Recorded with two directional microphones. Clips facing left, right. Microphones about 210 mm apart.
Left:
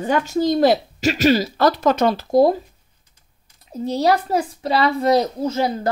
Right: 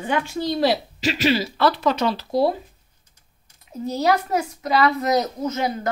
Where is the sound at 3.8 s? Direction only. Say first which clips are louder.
Left 2 dB; 30° left (ahead or behind).